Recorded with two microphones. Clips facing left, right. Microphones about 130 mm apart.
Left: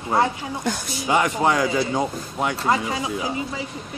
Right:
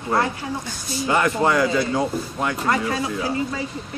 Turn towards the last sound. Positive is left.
turn(degrees=15)  # may be behind; listen again after turning